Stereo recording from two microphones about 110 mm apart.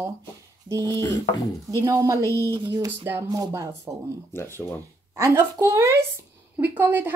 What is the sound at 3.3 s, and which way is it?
Speech, 30° right (ahead or behind).